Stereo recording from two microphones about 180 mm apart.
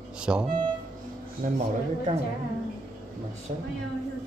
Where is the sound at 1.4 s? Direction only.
50° right (ahead or behind).